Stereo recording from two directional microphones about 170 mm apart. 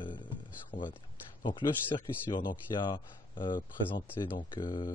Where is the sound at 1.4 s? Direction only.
30° left (ahead or behind).